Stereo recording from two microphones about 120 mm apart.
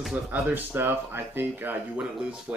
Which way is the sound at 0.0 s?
10° right (ahead or behind).